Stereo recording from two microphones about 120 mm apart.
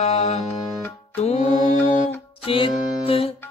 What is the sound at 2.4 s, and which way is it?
Music, 50° left (ahead or behind).